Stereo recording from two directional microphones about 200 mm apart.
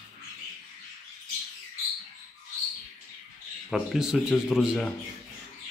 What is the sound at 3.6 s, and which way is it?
Speech, centre (ahead or behind).